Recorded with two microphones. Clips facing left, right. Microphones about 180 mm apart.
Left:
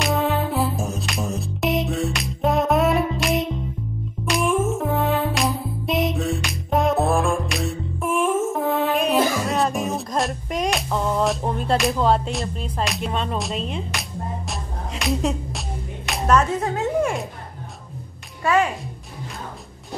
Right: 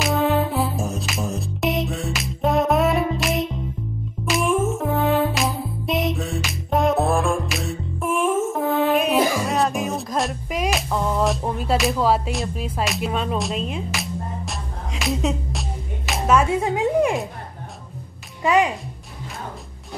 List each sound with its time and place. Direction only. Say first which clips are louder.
0.0 s music: right 2 dB; centre (ahead or behind)
16.1 s speech: right 1 dB; 5° right (ahead or behind)
18.4 s music: right 1 dB; 15° right (ahead or behind)